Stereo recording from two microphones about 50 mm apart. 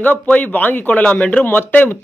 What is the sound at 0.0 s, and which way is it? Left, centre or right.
A man's voice, left.